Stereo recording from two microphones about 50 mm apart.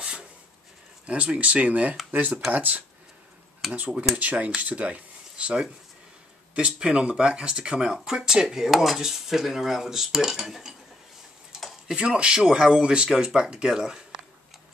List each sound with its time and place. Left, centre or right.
0.0 s a sound: centre
1.0 s speech: right
3.6 s speech: centre
4.2 s speech: right
6.5 s speech: centre
11.9 s speech: centre